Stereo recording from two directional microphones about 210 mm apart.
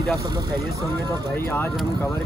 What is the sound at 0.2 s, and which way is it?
Speech, 15° right (ahead or behind).